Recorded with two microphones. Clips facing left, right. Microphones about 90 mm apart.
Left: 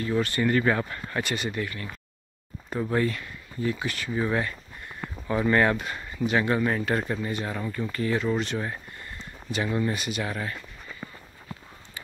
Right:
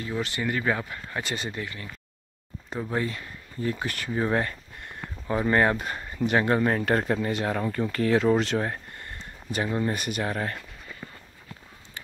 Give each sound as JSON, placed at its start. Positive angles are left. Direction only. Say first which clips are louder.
{"t": 0.0, "sound": "speech", "louder": "left 4 dB", "side_deg": -15}
{"t": 1.2, "sound": "speech", "louder": "left 3 dB", "side_deg": -30}
{"t": 3.1, "sound": "speech", "louder": "left 3 dB", "side_deg": -35}
{"t": 5.3, "sound": "speech", "louder": "even", "side_deg": -25}
{"t": 5.9, "sound": "speech", "louder": "right 1 dB", "side_deg": -40}
{"t": 8.5, "sound": "a sound", "louder": "right 3 dB", "side_deg": -55}
{"t": 9.9, "sound": "speech", "louder": "right 2 dB", "side_deg": -50}